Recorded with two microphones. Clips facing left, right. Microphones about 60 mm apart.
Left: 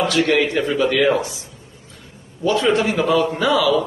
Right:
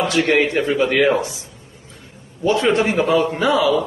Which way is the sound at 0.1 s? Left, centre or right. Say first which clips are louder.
Right 1 dB; right.